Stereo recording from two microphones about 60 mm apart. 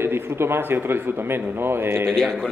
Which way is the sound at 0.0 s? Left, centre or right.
Right.